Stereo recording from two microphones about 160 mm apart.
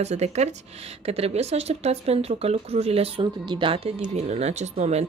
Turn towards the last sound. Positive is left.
turn(degrees=-45)  # may be behind; listen again after turning